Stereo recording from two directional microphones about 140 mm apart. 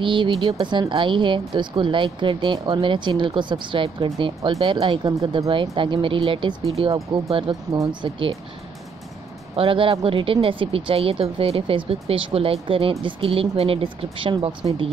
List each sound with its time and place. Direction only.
0.0 s speech: 35° right (ahead or behind)
9.6 s speech: 40° right (ahead or behind)